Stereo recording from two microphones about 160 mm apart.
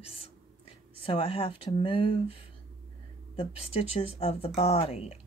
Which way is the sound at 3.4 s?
40° left (ahead or behind).